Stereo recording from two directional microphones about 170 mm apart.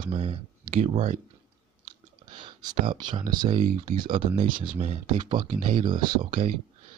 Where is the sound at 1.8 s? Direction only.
30° right (ahead or behind).